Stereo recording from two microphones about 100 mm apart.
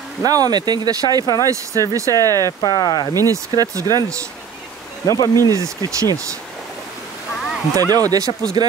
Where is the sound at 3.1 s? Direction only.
35° right (ahead or behind).